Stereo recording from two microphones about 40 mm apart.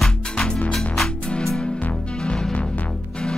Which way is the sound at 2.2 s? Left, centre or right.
Left.